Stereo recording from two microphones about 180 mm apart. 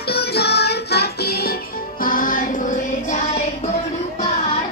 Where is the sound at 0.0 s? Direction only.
60° left (ahead or behind); by 3.4 s 45° left (ahead or behind).